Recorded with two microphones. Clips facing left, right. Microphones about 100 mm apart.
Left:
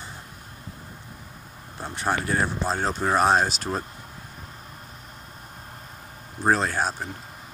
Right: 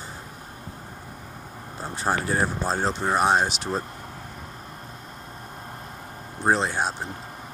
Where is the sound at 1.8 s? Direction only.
35° right (ahead or behind).